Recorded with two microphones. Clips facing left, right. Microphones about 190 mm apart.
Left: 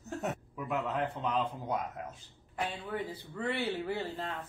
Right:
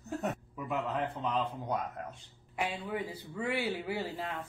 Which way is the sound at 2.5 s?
10° right (ahead or behind).